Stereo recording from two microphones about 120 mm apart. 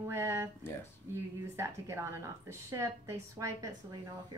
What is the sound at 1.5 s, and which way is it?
A woman's voice, 20° right (ahead or behind).